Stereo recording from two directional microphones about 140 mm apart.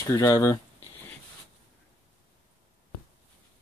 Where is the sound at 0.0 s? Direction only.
25° left (ahead or behind).